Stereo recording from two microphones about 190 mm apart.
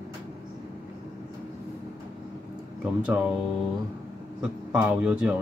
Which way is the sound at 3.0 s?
5° right (ahead or behind).